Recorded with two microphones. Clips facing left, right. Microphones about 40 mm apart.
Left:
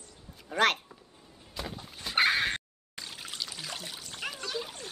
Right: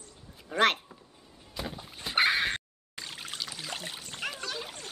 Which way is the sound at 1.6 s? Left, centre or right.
Centre.